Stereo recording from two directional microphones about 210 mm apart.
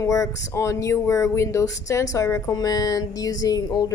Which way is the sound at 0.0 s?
15° left (ahead or behind).